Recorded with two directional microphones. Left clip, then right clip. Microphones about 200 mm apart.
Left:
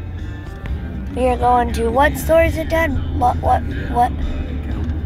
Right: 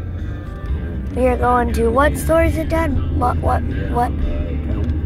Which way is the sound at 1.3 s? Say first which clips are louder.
Left 1 dB; 5° left (ahead or behind).